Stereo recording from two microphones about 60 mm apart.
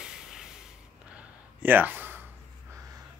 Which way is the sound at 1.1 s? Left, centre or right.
Right.